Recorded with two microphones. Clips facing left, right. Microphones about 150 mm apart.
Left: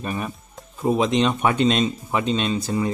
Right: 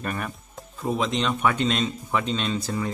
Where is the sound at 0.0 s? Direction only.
20° left (ahead or behind).